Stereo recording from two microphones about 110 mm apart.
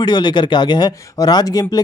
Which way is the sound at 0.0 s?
40° left (ahead or behind).